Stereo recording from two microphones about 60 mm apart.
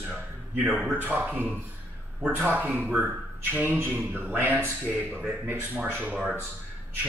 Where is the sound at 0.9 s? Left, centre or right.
Right.